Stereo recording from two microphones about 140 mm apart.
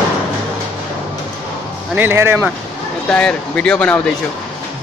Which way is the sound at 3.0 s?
10° left (ahead or behind).